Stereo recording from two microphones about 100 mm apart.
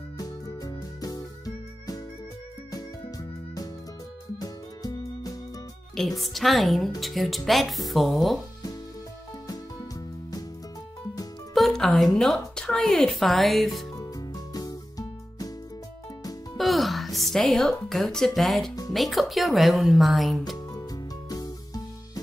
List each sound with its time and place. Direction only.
0.2 s music: 40° left (ahead or behind)
4.4 s music: 40° left (ahead or behind)
5.9 s speech: centre (ahead or behind)
9.5 s music: 40° left (ahead or behind)
11.5 s speech: centre (ahead or behind)
13.9 s music: 40° left (ahead or behind)
16.5 s speech: centre (ahead or behind)
20.5 s music: 40° left (ahead or behind)